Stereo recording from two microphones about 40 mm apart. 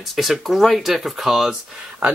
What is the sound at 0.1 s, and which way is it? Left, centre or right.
Speech, centre.